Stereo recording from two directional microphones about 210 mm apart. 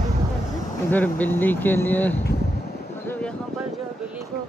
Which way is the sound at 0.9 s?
10° left (ahead or behind).